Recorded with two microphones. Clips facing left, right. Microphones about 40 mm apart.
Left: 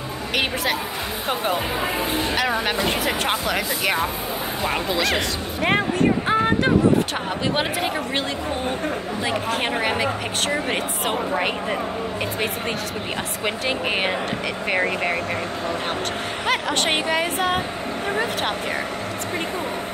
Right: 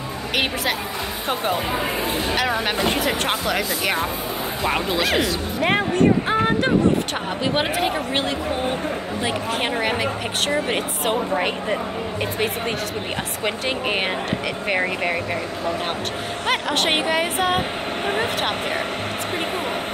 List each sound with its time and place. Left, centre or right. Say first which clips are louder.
1.3 s speech: right 1 dB; centre
9.2 s speech: even; centre
13.4 s speech: even; centre
16.4 s speech: right 1 dB; centre
17.6 s speech: right 2 dB; right